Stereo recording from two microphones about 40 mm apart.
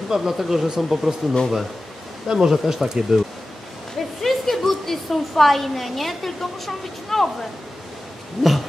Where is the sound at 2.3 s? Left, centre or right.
Centre.